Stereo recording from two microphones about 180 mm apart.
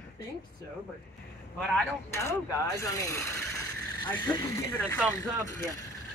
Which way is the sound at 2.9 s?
20° left (ahead or behind).